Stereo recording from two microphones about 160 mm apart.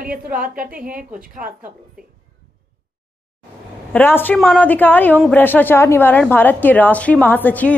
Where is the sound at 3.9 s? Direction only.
10° left (ahead or behind).